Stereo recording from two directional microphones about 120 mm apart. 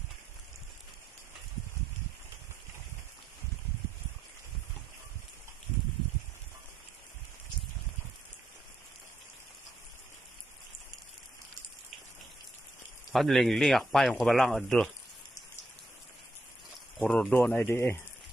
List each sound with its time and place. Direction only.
13.1 s speech: centre (ahead or behind)
16.9 s speech: centre (ahead or behind)